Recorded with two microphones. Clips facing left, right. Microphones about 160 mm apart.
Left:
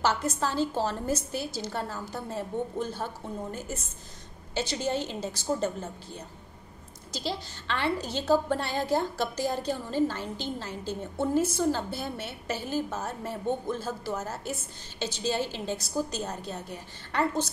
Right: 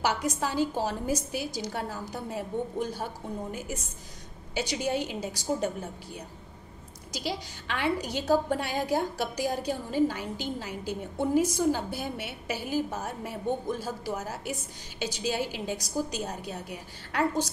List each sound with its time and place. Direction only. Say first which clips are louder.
0.0 s a woman's voice: left 1 dB; 15° right (ahead or behind)